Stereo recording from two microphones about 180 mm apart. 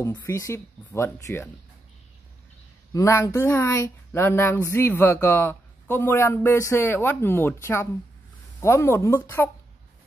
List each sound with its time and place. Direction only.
0.0 s speech: 15° left (ahead or behind)
2.9 s speech: 15° left (ahead or behind)